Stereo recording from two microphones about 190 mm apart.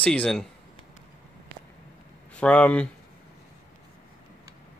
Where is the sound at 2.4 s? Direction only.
5° left (ahead or behind).